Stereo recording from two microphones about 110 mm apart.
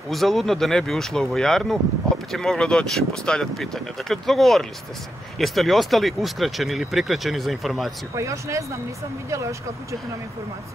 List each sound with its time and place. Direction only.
0.1 s speech: centre (ahead or behind)
8.2 s speech: 30° right (ahead or behind)